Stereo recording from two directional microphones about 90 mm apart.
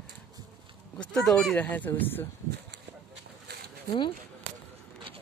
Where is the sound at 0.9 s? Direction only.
10° left (ahead or behind).